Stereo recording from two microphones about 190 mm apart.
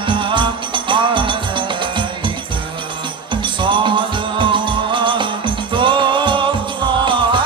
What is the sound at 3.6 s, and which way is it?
Music, 25° right (ahead or behind).